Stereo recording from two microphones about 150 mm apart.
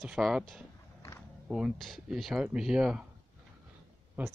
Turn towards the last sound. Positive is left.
turn(degrees=-10)  # may be behind; listen again after turning